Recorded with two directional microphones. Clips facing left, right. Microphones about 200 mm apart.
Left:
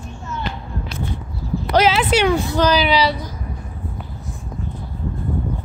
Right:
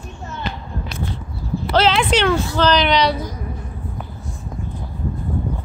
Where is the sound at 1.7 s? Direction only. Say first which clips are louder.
Left 1 dB; 10° left (ahead or behind).